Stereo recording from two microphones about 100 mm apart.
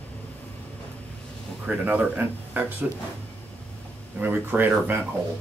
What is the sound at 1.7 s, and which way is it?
Speech, 15° right (ahead or behind).